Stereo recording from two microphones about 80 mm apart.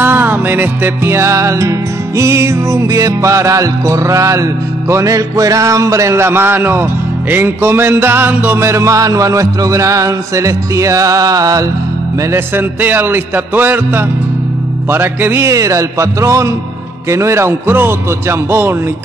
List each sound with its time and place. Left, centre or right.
0.0 s music: right
12.3 s a man's voice: right
14.9 s music: right